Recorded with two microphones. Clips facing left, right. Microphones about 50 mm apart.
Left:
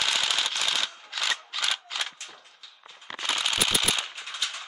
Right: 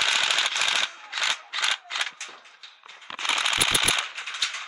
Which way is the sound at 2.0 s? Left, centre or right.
Right.